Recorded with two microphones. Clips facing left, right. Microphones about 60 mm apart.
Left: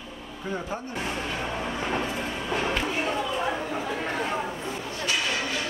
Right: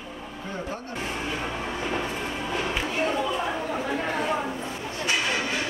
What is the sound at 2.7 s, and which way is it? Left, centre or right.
Chatter, centre.